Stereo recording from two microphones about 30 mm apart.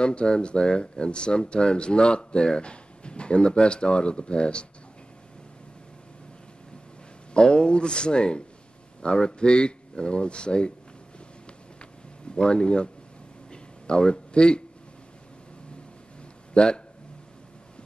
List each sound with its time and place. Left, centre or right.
0.0 s speech: left
7.3 s speech: left
12.4 s speech: left
13.5 s a sound: left
16.5 s speech: left